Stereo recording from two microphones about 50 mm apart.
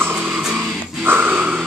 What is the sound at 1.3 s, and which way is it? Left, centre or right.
Music, right.